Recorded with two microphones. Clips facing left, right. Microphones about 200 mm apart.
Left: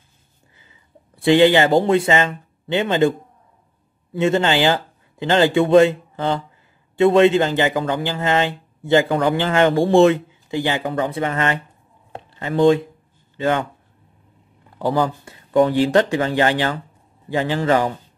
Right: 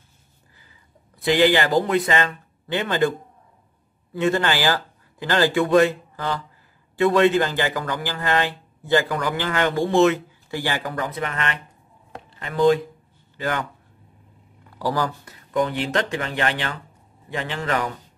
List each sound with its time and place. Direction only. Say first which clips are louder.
0.6 s a man's voice: left 5 dB; 25° left (ahead or behind)
10.5 s speech: left 5 dB; 20° left (ahead or behind)
12.1 s a sound: left 8 dB; 30° left (ahead or behind)
13.4 s a man's voice: left 6 dB; 25° left (ahead or behind)
14.8 s speech: left 4 dB; 20° left (ahead or behind)